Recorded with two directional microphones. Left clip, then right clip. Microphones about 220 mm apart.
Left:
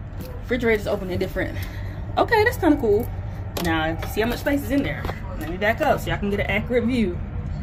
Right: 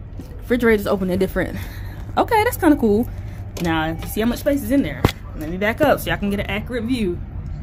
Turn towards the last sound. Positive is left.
turn(degrees=-55)  # may be behind; listen again after turning